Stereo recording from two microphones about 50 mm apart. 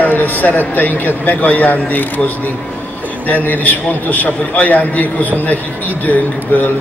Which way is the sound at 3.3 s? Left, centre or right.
Left.